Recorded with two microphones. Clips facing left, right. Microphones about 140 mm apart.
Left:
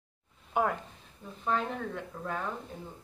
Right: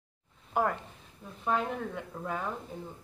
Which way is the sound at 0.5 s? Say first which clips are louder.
Even; centre (ahead or behind).